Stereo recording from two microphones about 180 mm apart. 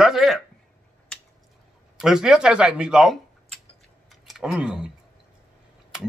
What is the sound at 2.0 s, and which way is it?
Speech, centre (ahead or behind).